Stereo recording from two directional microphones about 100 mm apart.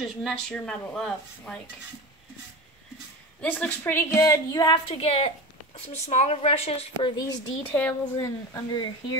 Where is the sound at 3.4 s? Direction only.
15° left (ahead or behind); by 4.7 s 35° left (ahead or behind).